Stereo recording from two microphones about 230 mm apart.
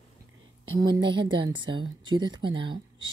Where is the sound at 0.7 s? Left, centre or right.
Centre.